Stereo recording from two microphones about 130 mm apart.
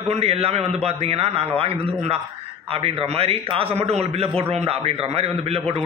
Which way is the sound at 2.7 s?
50° right (ahead or behind).